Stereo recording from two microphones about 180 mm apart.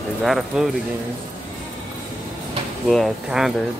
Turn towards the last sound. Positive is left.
turn(degrees=0)  # may be behind; listen again after turning